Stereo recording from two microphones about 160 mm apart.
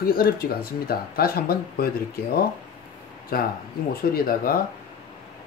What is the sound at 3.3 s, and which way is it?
Speech, 65° left (ahead or behind).